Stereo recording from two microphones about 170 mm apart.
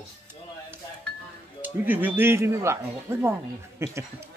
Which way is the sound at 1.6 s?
10° right (ahead or behind).